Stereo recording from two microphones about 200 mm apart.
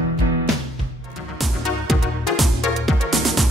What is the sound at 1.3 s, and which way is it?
Music, centre (ahead or behind).